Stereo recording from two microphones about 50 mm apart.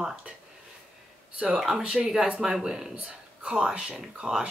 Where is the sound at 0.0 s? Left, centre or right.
Right.